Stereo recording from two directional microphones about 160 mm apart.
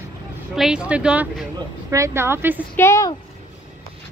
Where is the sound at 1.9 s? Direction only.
20° right (ahead or behind).